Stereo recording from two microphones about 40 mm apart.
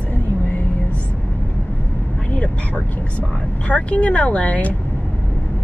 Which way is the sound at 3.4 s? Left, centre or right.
Left.